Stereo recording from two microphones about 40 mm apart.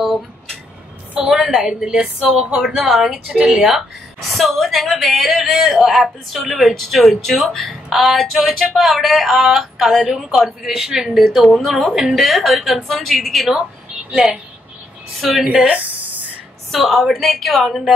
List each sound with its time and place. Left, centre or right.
1.2 s a woman's voice: centre
4.4 s a woman's voice: centre
11.1 s speech: centre
14.1 s a woman's voice: centre
15.8 s a sound: right
16.7 s speech: centre